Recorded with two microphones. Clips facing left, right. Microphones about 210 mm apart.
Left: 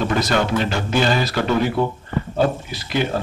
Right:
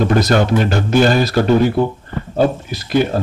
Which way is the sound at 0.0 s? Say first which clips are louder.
Right 5 dB; 45° right (ahead or behind).